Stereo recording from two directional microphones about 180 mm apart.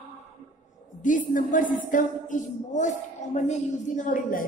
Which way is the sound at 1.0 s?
45° left (ahead or behind).